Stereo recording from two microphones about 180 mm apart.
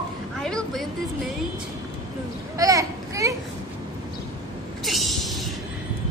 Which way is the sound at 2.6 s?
20° right (ahead or behind).